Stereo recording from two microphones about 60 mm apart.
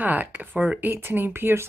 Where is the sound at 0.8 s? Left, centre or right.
Right.